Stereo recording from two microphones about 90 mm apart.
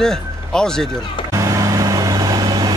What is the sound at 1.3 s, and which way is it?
Vehicle, 40° right (ahead or behind).